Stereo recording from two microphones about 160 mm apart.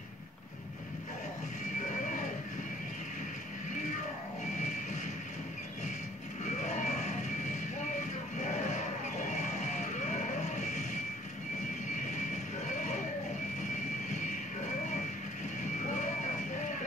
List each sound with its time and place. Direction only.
6.6 s music: 50° left (ahead or behind)
8.4 s music: 45° left (ahead or behind)
12.6 s music: 50° left (ahead or behind)